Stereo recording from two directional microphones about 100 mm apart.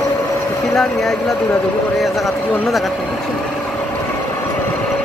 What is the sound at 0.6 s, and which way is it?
A man's voice, 5° left (ahead or behind).